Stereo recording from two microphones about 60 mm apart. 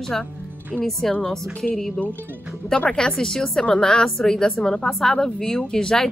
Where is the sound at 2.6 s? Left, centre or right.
Centre.